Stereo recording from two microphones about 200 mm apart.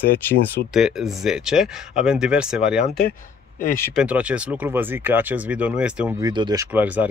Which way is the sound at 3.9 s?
5° right (ahead or behind).